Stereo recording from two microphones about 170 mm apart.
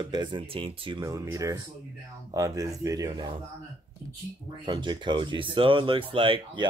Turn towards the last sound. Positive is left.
turn(degrees=-30)  # may be behind; listen again after turning